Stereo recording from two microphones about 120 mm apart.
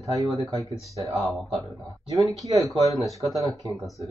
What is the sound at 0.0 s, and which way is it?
Speech, 30° right (ahead or behind).